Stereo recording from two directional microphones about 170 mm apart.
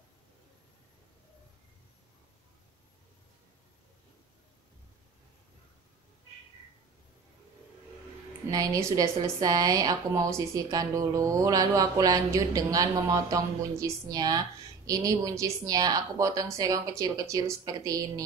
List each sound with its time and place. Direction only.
8.5 s speech: 20° right (ahead or behind)